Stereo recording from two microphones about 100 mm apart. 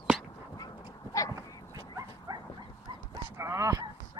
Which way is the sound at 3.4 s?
30° right (ahead or behind).